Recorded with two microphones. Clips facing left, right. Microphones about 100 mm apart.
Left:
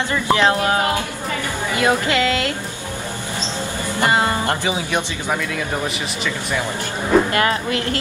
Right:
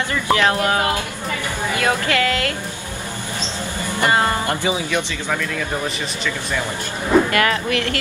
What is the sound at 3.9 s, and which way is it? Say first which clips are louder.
Speech: even; 20° left (ahead or behind).